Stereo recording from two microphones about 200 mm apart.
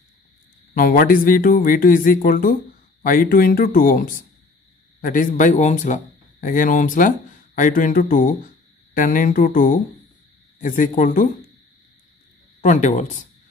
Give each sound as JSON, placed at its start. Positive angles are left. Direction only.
{"t": 0.7, "sound": "speech", "side_deg": 45}
{"t": 12.6, "sound": "speech", "side_deg": 40}